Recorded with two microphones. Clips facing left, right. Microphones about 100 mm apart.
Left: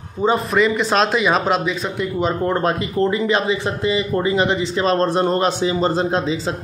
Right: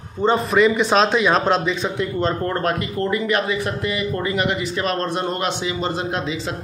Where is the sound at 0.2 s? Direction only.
Centre (ahead or behind).